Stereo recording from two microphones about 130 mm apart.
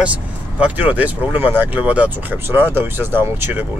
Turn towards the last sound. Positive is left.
turn(degrees=-20)  # may be behind; listen again after turning